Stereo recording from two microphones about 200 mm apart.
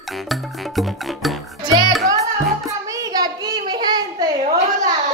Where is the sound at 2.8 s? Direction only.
15° right (ahead or behind).